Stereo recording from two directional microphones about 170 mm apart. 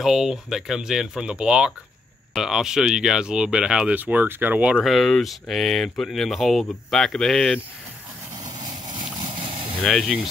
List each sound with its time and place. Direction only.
0.0 s speech: centre (ahead or behind)
8.6 s vehicle: 25° right (ahead or behind)
9.8 s speech: centre (ahead or behind)